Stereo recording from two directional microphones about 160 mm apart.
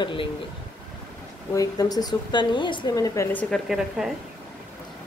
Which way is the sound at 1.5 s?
25° left (ahead or behind).